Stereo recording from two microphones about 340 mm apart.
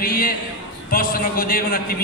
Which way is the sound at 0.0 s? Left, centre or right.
Left.